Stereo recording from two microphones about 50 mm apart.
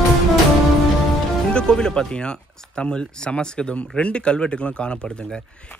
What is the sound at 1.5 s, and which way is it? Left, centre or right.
Speech, centre.